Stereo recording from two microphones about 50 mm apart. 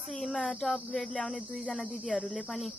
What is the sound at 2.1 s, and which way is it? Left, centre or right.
Cricket, centre.